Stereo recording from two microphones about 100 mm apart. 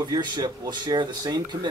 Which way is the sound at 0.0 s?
45° right (ahead or behind).